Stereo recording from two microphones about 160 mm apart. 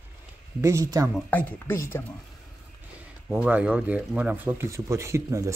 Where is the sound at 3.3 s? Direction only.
10° right (ahead or behind).